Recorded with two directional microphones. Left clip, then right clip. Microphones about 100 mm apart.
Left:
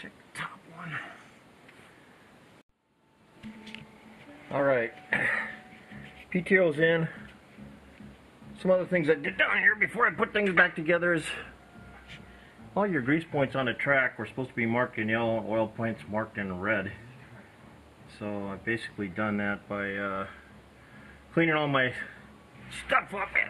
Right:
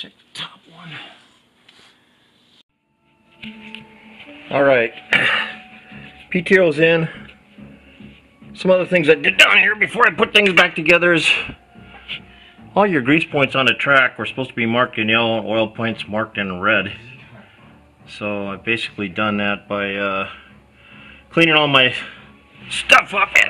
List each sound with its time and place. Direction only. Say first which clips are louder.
4.5 s a man's voice: right 12 dB; 30° right (ahead or behind)
8.5 s speech: right 10 dB; 25° right (ahead or behind)
12.7 s speech: right 12 dB; 35° right (ahead or behind)
13.2 s speech: right 12 dB; 25° right (ahead or behind)
18.2 s speech: right 11 dB; 25° right (ahead or behind)